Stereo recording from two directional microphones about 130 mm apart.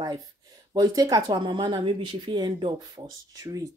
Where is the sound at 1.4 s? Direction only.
40° right (ahead or behind).